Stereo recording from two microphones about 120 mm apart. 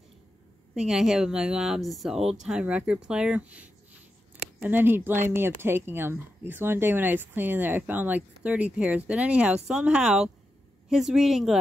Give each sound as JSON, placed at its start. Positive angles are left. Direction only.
{"t": 0.7, "sound": "speech", "side_deg": -5}